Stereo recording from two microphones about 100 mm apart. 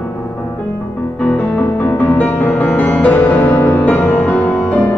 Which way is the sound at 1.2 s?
15° left (ahead or behind).